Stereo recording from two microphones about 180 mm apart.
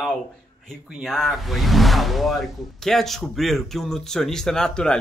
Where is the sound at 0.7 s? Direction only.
Centre (ahead or behind).